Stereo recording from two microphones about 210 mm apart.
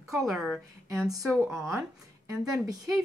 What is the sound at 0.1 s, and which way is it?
A woman's voice, centre (ahead or behind).